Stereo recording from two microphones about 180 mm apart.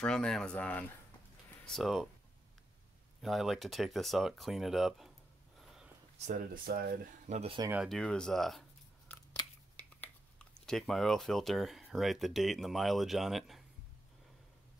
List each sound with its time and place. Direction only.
0.0 s speech: 5° left (ahead or behind)
3.2 s speech: centre (ahead or behind)
6.1 s speech: 45° right (ahead or behind)
7.2 s speech: 35° right (ahead or behind)
7.8 s speech: 5° left (ahead or behind)
9.1 s biting: 10° left (ahead or behind)
10.6 s speech: 5° left (ahead or behind)